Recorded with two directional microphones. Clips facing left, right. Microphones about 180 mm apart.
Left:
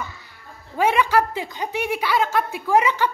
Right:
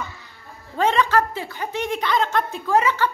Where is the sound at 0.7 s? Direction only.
10° left (ahead or behind).